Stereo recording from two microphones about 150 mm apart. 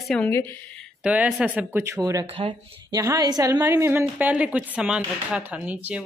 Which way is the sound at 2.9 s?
25° right (ahead or behind).